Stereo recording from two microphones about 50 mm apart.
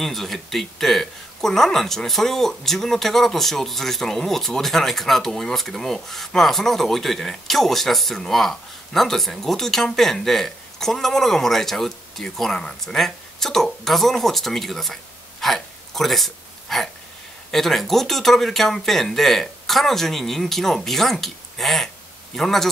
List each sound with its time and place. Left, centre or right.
0.0 s speech: centre